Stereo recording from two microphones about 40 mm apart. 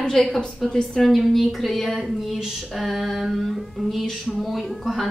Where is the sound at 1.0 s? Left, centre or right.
Centre.